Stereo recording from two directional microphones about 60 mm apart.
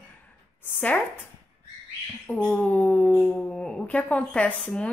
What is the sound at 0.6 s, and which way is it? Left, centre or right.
Speech, left.